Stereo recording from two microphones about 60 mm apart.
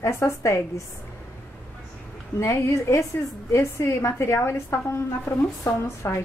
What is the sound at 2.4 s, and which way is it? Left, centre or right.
A woman's voice, left.